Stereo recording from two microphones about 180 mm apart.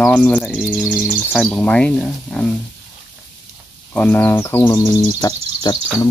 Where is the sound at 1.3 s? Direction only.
5° left (ahead or behind).